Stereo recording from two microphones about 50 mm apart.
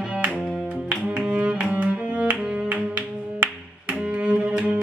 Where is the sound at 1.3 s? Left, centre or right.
Right.